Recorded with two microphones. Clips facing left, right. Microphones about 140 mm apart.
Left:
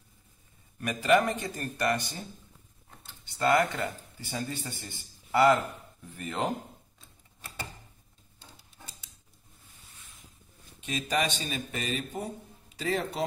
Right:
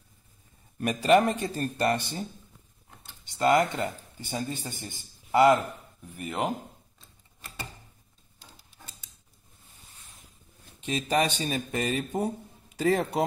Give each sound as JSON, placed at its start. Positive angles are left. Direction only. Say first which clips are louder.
{"t": 0.7, "sound": "speech", "louder": "right 3 dB", "side_deg": -35}
{"t": 3.3, "sound": "speech", "louder": "right 2 dB", "side_deg": -15}
{"t": 10.8, "sound": "a man's voice", "louder": "right 4 dB", "side_deg": -30}